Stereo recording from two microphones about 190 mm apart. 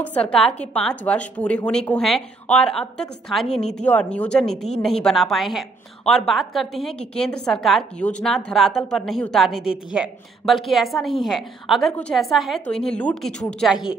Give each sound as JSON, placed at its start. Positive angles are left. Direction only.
{"t": 0.0, "sound": "a woman's voice", "side_deg": 5}